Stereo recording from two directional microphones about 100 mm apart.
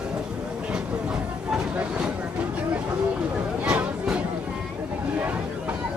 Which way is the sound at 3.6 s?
15° right (ahead or behind).